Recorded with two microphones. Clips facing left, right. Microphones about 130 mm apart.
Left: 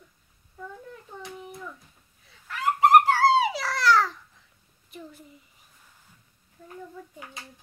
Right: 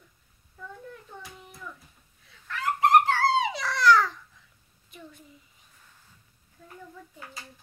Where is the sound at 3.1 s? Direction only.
10° left (ahead or behind).